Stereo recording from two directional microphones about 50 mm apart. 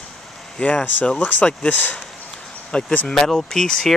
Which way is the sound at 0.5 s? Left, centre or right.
Left.